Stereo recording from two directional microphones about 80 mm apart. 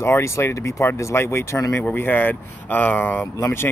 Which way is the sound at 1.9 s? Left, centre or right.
Left.